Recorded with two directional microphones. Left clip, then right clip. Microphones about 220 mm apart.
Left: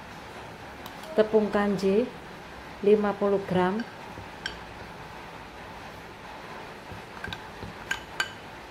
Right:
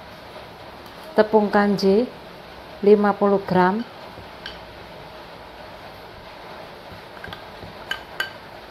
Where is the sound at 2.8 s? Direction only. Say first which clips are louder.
Right 7 dB; 15° right (ahead or behind).